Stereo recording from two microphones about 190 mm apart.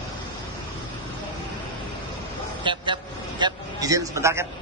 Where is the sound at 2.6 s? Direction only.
25° right (ahead or behind).